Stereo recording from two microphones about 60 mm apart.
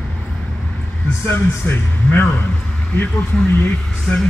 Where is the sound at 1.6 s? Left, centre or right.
Left.